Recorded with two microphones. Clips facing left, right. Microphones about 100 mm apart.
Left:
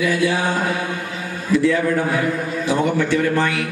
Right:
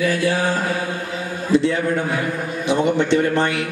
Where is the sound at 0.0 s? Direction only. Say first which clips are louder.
Left 1 dB; 50° right (ahead or behind).